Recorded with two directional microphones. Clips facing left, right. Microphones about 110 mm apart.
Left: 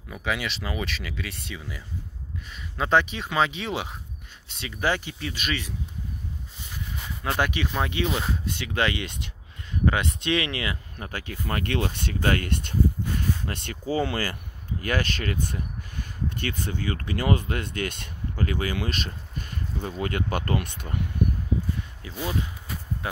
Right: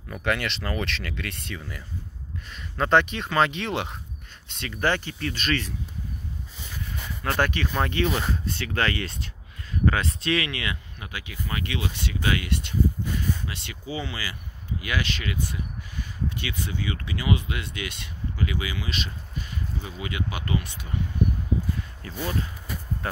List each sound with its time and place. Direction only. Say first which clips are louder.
0.1 s speech: right 2 dB; 5° left (ahead or behind)
7.2 s speech: right 1 dB; 15° left (ahead or behind); by 11.1 s 30° left (ahead or behind)
11.1 s speech: left 3 dB; 45° left (ahead or behind)
22.0 s speech: even; 15° left (ahead or behind)